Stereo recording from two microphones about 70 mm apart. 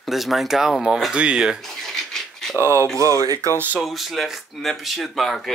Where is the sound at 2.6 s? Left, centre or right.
Right.